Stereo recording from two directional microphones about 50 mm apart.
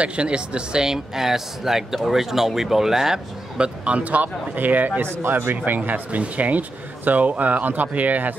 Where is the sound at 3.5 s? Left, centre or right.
Right.